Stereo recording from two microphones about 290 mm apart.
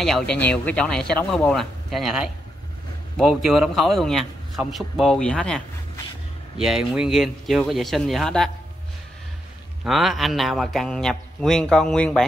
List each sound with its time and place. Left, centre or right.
0.0 s a man's voice: centre
6.6 s a man's voice: centre
9.8 s a man's voice: centre